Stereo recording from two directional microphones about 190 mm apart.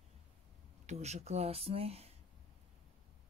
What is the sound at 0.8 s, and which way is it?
Speech, 35° right (ahead or behind).